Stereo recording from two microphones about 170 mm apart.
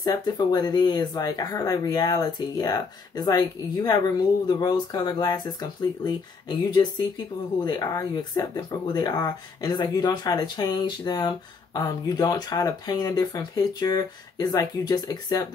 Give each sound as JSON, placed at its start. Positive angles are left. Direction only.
{"t": 0.0, "sound": "speech", "side_deg": 25}